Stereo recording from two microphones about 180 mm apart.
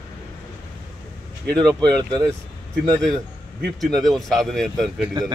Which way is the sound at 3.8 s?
Centre (ahead or behind).